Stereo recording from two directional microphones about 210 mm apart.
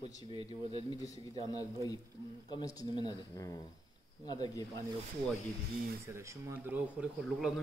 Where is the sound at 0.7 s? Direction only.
15° left (ahead or behind).